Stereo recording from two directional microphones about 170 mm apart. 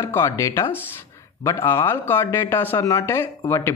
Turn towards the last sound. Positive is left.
turn(degrees=15)  # may be behind; listen again after turning